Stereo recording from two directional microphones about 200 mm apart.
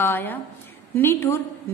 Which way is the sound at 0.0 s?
10° left (ahead or behind).